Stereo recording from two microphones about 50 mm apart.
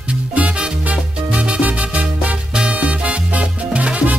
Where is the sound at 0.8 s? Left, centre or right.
Right.